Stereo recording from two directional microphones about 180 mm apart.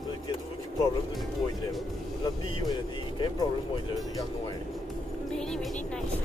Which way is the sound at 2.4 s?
25° left (ahead or behind).